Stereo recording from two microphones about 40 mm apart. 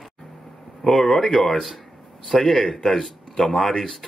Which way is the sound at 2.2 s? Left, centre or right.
Centre.